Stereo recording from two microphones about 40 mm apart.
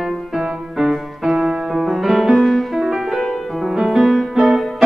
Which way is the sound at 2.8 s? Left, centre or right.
Centre.